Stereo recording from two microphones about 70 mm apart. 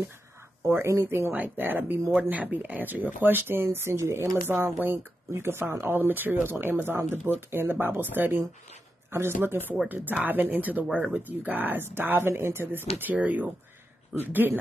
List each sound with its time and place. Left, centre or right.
0.7 s speech: right